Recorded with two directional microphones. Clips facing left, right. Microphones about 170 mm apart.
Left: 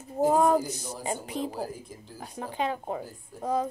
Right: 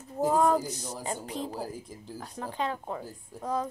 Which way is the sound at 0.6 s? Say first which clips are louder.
Left 2 dB; 5° left (ahead or behind).